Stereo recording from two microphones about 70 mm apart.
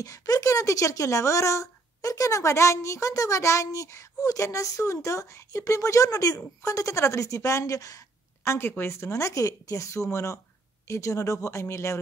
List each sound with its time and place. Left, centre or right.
0.0 s speech: left
8.5 s speech: left